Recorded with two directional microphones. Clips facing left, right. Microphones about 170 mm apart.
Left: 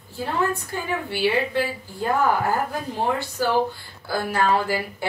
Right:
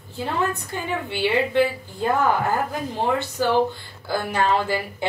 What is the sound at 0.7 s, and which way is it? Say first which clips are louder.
Speech: even; 20° right (ahead or behind).